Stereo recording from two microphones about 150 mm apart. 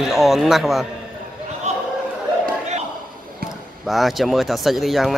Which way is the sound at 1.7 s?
45° right (ahead or behind).